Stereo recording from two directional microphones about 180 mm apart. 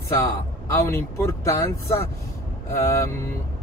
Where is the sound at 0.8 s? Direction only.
15° left (ahead or behind).